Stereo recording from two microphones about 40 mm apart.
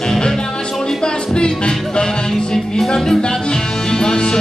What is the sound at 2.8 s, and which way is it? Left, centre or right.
Music, centre.